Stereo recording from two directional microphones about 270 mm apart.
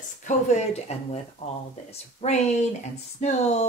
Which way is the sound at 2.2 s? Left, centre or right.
Left.